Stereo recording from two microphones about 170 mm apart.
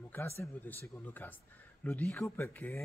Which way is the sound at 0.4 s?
10° left (ahead or behind).